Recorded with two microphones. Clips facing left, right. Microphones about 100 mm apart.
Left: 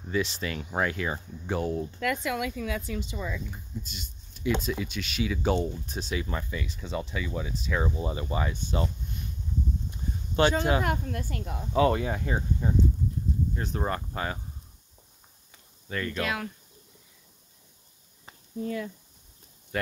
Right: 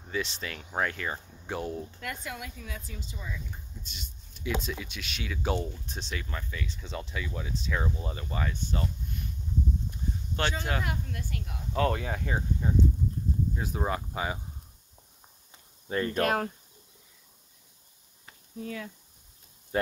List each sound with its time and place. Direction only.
0.1 s speech: centre (ahead or behind)
2.0 s speech: 90° left
3.8 s speech: centre (ahead or behind); by 8.8 s 20° left (ahead or behind)
9.8 s a sound: 15° left (ahead or behind)
10.8 s speech: 50° left (ahead or behind)
11.7 s speech: 5° left (ahead or behind)
15.9 s speech: 30° right (ahead or behind)
16.2 s speech: 45° right (ahead or behind)
19.7 s speech: 30° right (ahead or behind)